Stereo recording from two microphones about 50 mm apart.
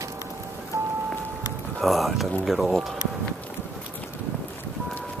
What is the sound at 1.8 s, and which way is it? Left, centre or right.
Speech, centre.